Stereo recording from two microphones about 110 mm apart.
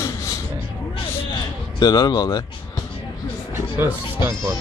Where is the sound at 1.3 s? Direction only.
35° left (ahead or behind).